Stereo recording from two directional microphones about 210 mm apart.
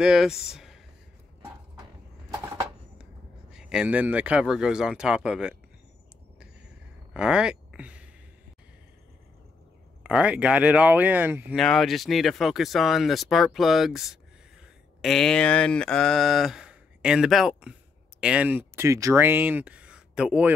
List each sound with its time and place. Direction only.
0.0 s speech: centre (ahead or behind)
0.5 s a sound: centre (ahead or behind)
3.5 s speech: 5° right (ahead or behind)
7.2 s speech: 5° right (ahead or behind)
10.0 s speech: 5° right (ahead or behind)